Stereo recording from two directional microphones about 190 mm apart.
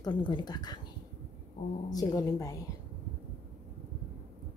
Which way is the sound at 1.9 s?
20° left (ahead or behind).